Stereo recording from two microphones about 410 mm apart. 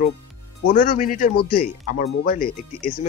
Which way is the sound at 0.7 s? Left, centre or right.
Centre.